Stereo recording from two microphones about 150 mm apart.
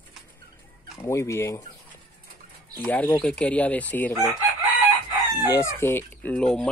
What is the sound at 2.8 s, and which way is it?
Speech, 10° left (ahead or behind).